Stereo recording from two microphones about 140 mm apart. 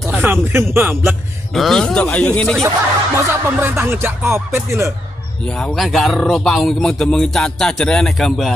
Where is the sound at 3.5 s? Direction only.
15° right (ahead or behind).